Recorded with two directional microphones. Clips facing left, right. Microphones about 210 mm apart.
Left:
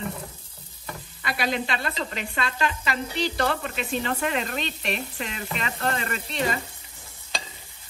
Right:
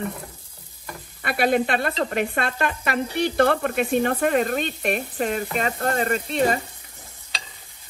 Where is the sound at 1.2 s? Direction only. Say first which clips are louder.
Right 7 dB; 55° right (ahead or behind).